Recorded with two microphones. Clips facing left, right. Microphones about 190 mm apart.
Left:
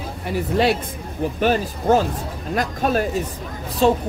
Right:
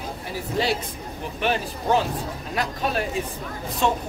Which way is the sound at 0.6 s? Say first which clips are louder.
Left 5 dB; 65° left (ahead or behind).